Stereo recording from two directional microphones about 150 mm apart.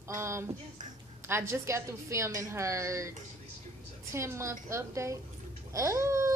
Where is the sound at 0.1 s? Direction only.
20° right (ahead or behind).